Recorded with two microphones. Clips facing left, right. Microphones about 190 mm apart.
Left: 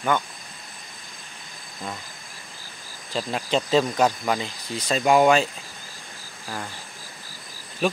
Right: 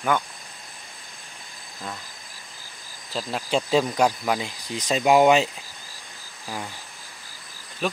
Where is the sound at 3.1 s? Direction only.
5° right (ahead or behind).